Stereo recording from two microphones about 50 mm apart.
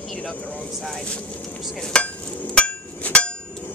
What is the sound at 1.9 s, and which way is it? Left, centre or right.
Hammer, centre.